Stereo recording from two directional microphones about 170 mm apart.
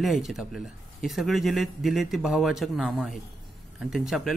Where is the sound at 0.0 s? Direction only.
Centre (ahead or behind).